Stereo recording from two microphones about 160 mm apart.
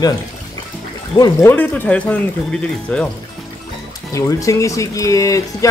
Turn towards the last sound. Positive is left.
turn(degrees=20)  # may be behind; listen again after turning